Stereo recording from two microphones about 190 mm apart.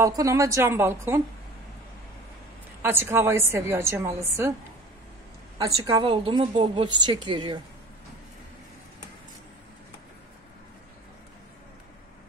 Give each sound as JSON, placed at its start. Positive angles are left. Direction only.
{"t": 0.0, "sound": "a woman's voice", "side_deg": -15}
{"t": 2.8, "sound": "a woman's voice", "side_deg": -10}
{"t": 5.6, "sound": "speech", "side_deg": -20}